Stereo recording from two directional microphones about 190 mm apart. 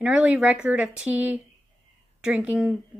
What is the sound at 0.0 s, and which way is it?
Speech, 5° right (ahead or behind).